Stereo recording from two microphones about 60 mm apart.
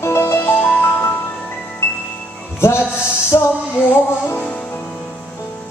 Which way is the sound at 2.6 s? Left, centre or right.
Left.